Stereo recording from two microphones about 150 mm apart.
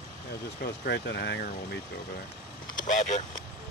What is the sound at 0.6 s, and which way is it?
Speech, 90° left.